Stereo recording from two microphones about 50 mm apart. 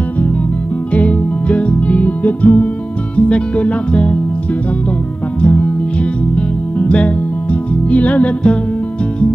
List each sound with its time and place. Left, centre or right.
0.9 s music: left
3.2 s speech: left
5.4 s music: left
7.9 s speech: left